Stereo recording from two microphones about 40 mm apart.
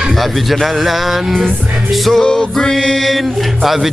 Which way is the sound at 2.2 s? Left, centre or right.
Left.